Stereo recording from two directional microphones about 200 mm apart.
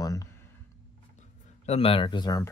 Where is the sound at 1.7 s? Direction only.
30° left (ahead or behind).